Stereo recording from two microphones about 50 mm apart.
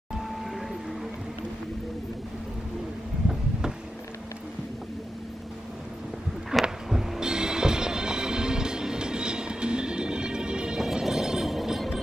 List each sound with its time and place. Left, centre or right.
6.5 s a sound: centre
6.9 s music: centre
10.8 s music: centre